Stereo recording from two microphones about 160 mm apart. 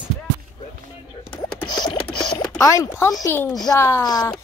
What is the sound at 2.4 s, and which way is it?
Speech, 20° left (ahead or behind).